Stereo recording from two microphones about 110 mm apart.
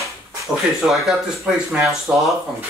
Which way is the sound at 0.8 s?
Centre (ahead or behind).